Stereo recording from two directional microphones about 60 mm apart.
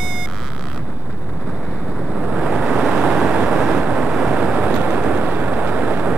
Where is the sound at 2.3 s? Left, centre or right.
Centre.